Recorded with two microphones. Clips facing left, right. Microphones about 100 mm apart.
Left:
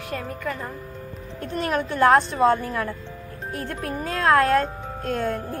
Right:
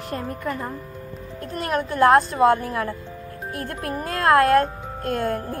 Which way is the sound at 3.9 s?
5° right (ahead or behind).